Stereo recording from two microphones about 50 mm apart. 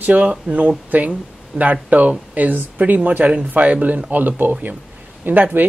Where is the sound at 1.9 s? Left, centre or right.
Right.